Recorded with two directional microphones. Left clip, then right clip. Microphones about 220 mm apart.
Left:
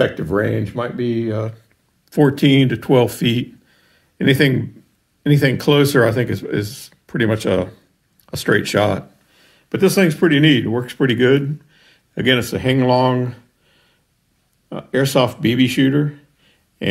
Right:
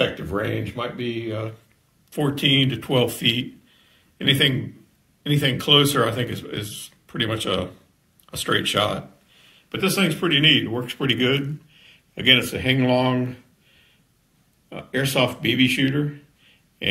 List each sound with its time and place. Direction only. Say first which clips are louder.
0.0 s speech: left 6 dB; 40° left (ahead or behind)
14.7 s speech: left 7 dB; 35° left (ahead or behind)